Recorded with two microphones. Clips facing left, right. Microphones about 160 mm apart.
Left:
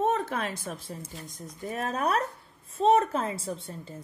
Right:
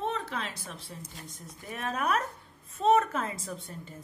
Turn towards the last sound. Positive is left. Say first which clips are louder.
# left 4 dB
turn(degrees=35)  # may be behind; listen again after turning